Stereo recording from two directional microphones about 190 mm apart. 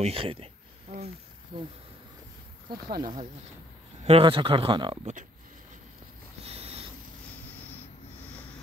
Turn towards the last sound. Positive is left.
turn(degrees=-30)  # may be behind; listen again after turning